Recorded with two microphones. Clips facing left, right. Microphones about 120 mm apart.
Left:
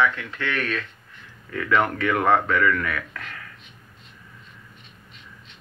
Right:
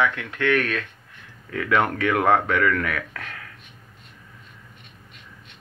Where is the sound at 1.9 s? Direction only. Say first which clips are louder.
Right 1 dB; 60° right (ahead or behind).